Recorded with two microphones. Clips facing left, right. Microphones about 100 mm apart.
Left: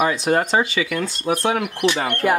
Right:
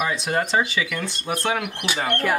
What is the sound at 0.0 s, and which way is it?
Speech, 45° left (ahead or behind).